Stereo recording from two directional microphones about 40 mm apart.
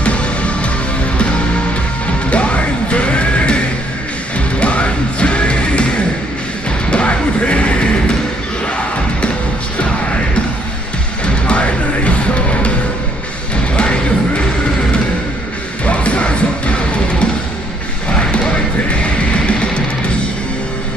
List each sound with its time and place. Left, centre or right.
0.0 s music: left
2.2 s music: left
6.9 s music: left
11.2 s music: left
13.7 s music: left
15.8 s music: left
19.0 s music: left